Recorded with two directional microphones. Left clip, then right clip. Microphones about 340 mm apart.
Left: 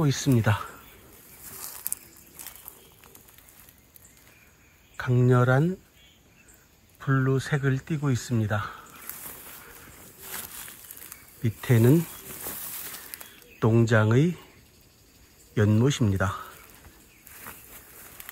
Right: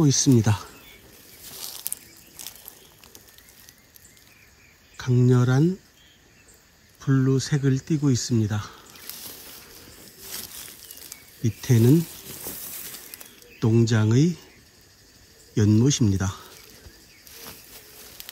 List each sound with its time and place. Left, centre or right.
0.3 s speech: centre
1.6 s a sound: centre
4.9 s speech: centre
7.0 s speech: centre
10.2 s a sound: centre
15.5 s speech: centre